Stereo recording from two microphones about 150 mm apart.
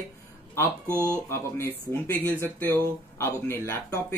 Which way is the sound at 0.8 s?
15° right (ahead or behind).